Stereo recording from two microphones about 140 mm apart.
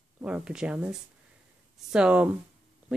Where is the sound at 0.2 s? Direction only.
5° right (ahead or behind).